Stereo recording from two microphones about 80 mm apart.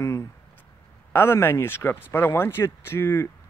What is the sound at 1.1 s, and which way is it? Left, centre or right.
Speech, left.